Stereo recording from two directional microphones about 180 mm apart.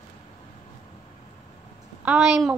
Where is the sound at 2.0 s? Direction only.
10° right (ahead or behind).